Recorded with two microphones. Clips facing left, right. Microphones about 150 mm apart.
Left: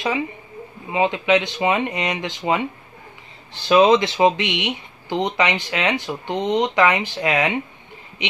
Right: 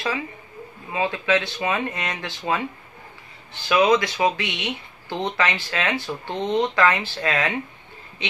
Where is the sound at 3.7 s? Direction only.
25° left (ahead or behind).